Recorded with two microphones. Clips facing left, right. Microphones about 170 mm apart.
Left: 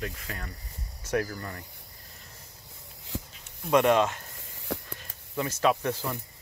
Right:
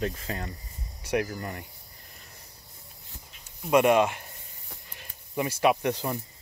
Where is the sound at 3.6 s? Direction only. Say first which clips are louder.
Right 1 dB; 10° right (ahead or behind).